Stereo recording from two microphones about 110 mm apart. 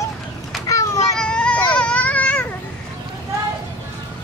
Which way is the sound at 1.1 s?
10° left (ahead or behind).